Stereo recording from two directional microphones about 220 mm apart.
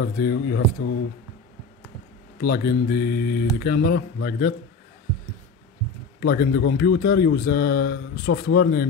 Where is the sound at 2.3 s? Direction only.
45° left (ahead or behind).